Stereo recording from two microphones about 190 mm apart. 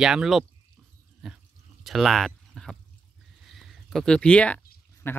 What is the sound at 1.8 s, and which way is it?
Speech, centre (ahead or behind).